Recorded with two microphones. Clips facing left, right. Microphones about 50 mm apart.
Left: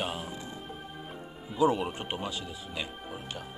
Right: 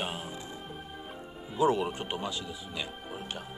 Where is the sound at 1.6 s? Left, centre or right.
Centre.